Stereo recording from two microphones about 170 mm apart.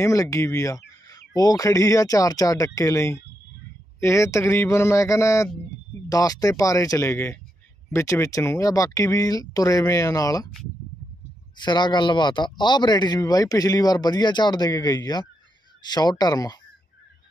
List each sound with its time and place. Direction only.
0.0 s a man's voice: 20° left (ahead or behind)
11.5 s a man's voice: 25° left (ahead or behind)